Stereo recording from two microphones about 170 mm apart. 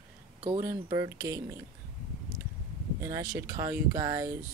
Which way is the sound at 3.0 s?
20° right (ahead or behind).